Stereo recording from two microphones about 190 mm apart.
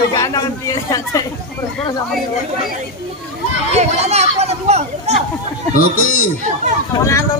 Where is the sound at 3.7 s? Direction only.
35° right (ahead or behind).